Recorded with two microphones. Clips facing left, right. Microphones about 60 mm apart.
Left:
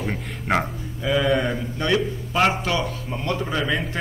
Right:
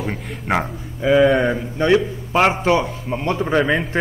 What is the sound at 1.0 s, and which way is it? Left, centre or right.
A man's voice, right.